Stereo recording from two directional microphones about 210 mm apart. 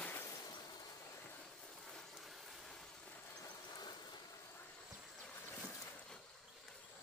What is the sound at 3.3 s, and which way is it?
Vehicle, 15° left (ahead or behind).